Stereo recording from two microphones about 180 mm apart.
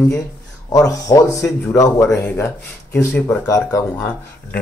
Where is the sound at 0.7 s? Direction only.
20° left (ahead or behind).